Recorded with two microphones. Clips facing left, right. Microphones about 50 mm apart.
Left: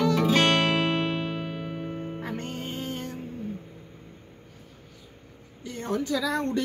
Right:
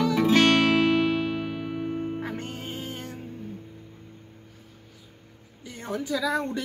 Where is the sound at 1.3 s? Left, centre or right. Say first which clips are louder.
Right 3 dB; right.